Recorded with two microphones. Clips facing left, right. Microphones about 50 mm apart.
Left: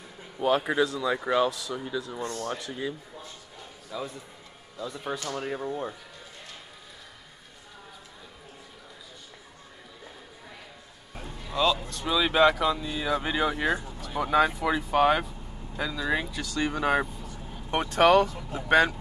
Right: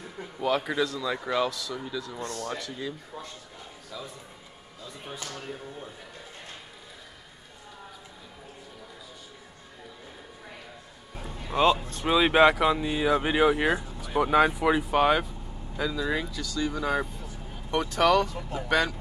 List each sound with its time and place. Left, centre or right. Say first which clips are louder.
0.7 s speech: left 3 dB; left
2.1 s speech: left 1 dB; centre
3.9 s speech: left 5 dB; centre
4.8 s speech: left 7 dB; left
11.5 s speech: right 3 dB; right; by 15.0 s centre
15.0 s speech: even; centre
16.3 s speech: left 1 dB; left
17.6 s speech: left 2 dB; left